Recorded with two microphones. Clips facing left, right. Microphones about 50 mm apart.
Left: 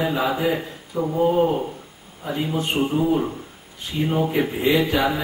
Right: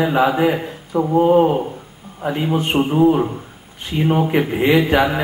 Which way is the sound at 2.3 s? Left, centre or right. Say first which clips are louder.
Right 5 dB; right.